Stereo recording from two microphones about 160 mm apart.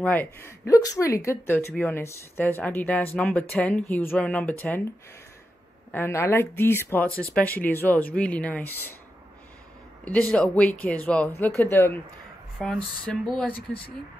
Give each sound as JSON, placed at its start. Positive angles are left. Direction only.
{"t": 0.0, "sound": "speech", "side_deg": 10}
{"t": 5.9, "sound": "speech", "side_deg": 15}
{"t": 10.0, "sound": "speech", "side_deg": 10}